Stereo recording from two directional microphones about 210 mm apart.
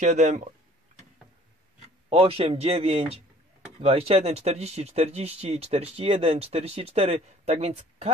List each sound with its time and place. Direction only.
0.0 s speech: 35° right (ahead or behind)
1.8 s speech: 30° right (ahead or behind)